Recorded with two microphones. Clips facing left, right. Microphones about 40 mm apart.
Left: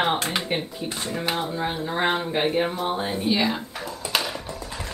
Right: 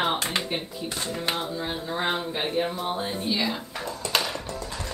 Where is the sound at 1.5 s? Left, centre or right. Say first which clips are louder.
Left 3 dB; left.